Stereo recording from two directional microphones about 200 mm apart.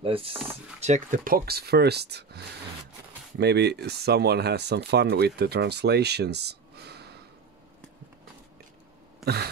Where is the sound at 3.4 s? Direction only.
55° right (ahead or behind).